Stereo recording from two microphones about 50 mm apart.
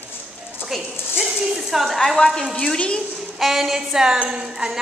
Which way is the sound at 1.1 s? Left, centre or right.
Centre.